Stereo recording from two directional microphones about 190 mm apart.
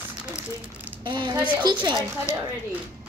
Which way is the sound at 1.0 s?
25° right (ahead or behind).